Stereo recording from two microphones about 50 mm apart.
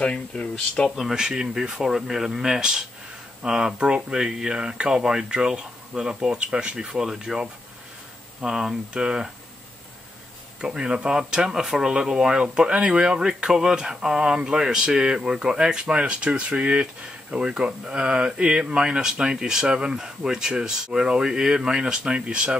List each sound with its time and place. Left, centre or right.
0.0 s speech: centre
1.1 s speech: centre
10.6 s speech: centre